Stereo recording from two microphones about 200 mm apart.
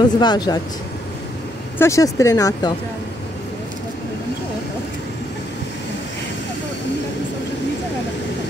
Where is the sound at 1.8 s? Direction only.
15° left (ahead or behind).